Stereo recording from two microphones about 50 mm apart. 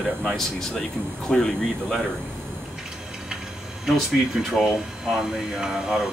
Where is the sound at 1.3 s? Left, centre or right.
Centre.